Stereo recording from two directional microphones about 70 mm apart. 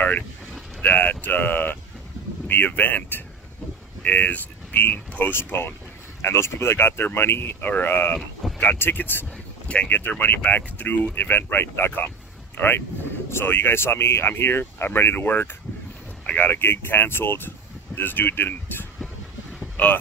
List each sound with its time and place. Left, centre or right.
0.7 s speech: left